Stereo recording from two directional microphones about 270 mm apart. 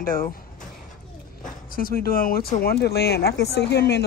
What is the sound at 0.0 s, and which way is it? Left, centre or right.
Speech, left.